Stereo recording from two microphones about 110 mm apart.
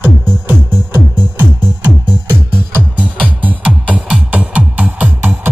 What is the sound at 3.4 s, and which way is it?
Music, 15° right (ahead or behind).